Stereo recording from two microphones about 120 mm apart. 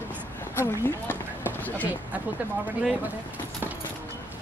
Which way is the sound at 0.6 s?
20° left (ahead or behind).